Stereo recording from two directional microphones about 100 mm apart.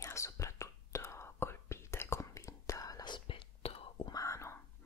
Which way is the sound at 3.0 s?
55° left (ahead or behind).